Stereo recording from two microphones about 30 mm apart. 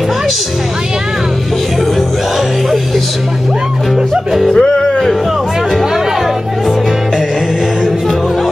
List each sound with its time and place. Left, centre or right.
4.5 s music: left